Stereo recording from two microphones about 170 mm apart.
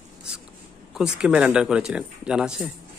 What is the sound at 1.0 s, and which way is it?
Speech, 5° right (ahead or behind).